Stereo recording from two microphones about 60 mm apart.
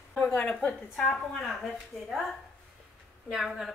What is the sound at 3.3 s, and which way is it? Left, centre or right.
Speech, centre.